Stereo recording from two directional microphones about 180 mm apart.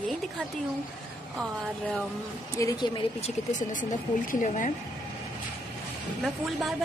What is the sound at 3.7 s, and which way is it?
Speech, 45° left (ahead or behind).